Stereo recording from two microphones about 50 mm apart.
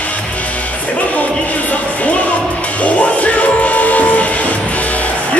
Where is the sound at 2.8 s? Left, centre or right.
Left.